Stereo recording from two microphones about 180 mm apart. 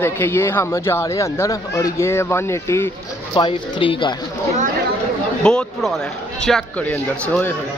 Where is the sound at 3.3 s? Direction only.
25° left (ahead or behind).